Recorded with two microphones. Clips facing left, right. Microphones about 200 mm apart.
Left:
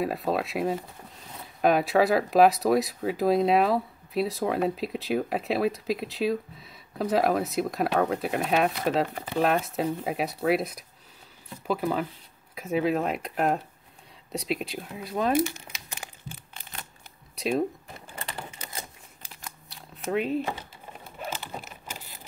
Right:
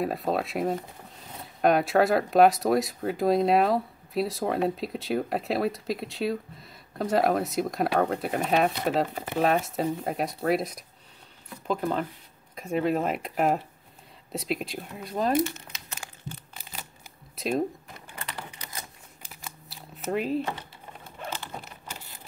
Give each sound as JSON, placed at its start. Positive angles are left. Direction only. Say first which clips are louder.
{"t": 0.0, "sound": "speech", "louder": "even", "side_deg": 0}
{"t": 17.4, "sound": "speech", "louder": "left 1 dB", "side_deg": 0}
{"t": 17.9, "sound": "typewriter", "louder": "left 1 dB", "side_deg": 25}
{"t": 19.4, "sound": "shuffling cards", "louder": "right 1 dB", "side_deg": 0}
{"t": 21.2, "sound": "computer keyboard", "louder": "left 1 dB", "side_deg": 5}